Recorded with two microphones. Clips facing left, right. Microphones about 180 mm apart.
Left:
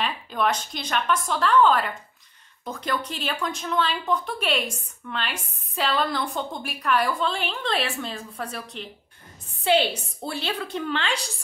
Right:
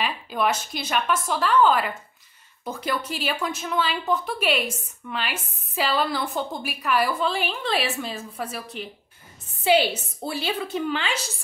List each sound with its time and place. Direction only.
0.0 s a woman's voice: 5° right (ahead or behind)